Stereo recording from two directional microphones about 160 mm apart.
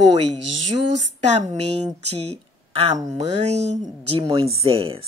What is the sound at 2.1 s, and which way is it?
Speech, 40° right (ahead or behind).